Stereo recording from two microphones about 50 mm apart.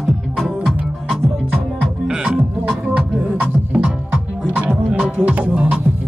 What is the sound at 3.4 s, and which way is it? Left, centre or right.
Music, right.